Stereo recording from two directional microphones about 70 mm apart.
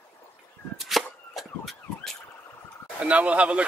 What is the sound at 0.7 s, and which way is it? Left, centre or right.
Siren, centre.